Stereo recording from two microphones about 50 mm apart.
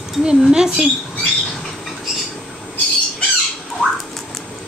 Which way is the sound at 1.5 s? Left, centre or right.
Centre.